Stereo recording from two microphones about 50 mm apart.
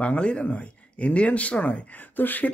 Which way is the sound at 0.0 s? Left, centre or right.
Left.